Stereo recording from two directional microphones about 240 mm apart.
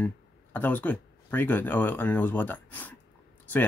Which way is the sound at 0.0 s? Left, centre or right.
Centre.